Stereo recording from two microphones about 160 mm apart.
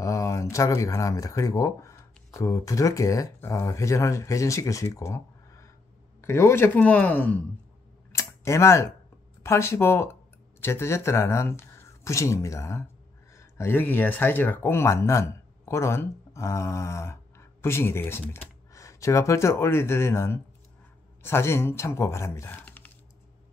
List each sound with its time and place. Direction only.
0.0 s speech: 20° left (ahead or behind)
8.1 s a sound: 15° left (ahead or behind)
9.4 s speech: 15° left (ahead or behind)